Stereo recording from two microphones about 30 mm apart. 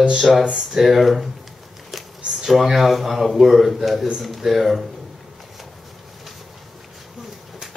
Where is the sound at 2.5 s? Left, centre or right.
Centre.